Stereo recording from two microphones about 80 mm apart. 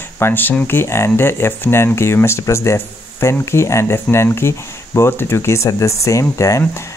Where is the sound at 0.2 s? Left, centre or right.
Left.